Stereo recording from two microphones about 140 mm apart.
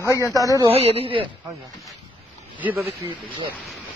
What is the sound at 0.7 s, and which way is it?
Speech, 45° right (ahead or behind).